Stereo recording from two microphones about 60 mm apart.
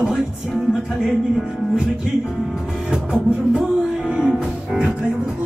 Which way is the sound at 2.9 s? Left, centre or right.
Centre.